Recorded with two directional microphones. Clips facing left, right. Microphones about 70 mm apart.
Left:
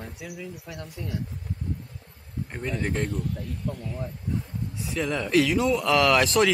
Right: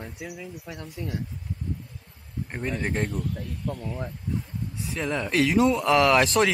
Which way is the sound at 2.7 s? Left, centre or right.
Right.